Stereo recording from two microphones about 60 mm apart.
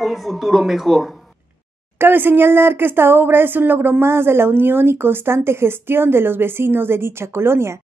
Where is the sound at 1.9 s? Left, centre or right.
Right.